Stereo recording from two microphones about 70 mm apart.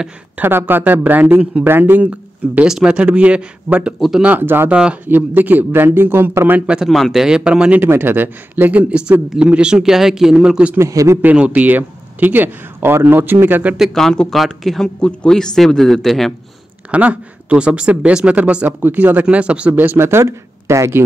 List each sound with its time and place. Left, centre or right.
0.4 s speech: right
2.6 s speech: centre
4.2 s speech: right
4.6 s speech: centre
5.0 s speech: right
6.6 s speech: centre
6.9 s speech: centre
7.8 s speech: right; by 10.7 s centre
10.8 s a man's voice: right
11.3 s speech: right
13.9 s a man's voice: centre
15.0 s a man's voice: centre
16.9 s speech: centre; by 21.0 s right